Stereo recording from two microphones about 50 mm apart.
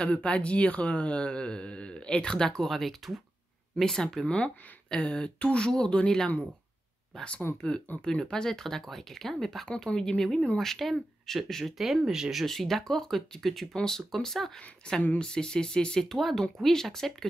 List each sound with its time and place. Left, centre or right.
0.0 s speech: left; by 11.7 s centre
12.1 s speech: centre
12.4 s speech: centre